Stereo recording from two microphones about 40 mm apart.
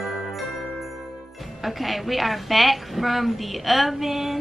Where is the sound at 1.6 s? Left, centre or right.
Centre.